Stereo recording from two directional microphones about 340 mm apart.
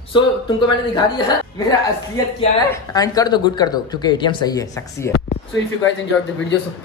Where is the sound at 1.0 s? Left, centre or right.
Centre.